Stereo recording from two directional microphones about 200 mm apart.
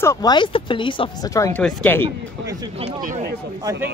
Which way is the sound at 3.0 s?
40° right (ahead or behind).